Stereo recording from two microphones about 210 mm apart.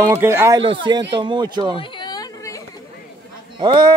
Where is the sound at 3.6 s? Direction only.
20° right (ahead or behind).